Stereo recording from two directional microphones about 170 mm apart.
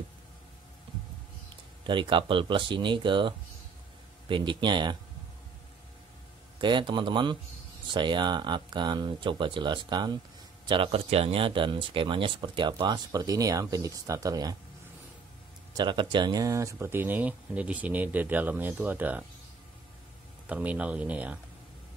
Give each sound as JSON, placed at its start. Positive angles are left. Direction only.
{"t": 1.9, "sound": "speech", "side_deg": -30}
{"t": 6.6, "sound": "speech", "side_deg": -30}
{"t": 15.7, "sound": "speech", "side_deg": -25}
{"t": 20.4, "sound": "speech", "side_deg": -10}